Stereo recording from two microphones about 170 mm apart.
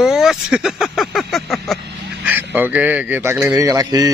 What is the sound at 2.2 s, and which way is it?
Speech, 10° right (ahead or behind).